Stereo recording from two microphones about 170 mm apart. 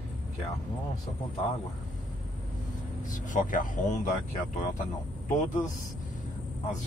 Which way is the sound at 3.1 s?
50° left (ahead or behind).